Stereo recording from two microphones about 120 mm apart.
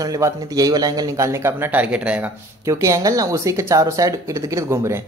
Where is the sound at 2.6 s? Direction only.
25° right (ahead or behind).